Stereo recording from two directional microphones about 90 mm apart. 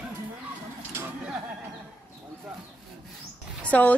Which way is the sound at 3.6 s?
15° left (ahead or behind).